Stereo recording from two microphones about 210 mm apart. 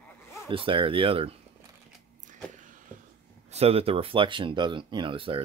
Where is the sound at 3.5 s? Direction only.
30° right (ahead or behind).